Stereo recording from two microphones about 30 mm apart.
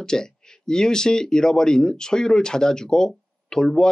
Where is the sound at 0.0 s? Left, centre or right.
Left.